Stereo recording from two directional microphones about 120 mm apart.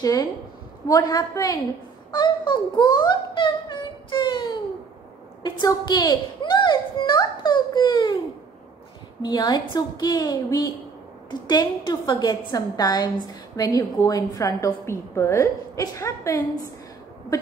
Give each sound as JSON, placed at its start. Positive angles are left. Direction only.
{"t": 0.0, "sound": "a woman's voice", "side_deg": 30}
{"t": 2.0, "sound": "music", "side_deg": 40}
{"t": 5.4, "sound": "a child's voice", "side_deg": 40}
{"t": 9.2, "sound": "a woman's voice", "side_deg": 35}